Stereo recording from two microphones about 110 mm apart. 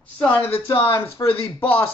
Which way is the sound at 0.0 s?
15° left (ahead or behind).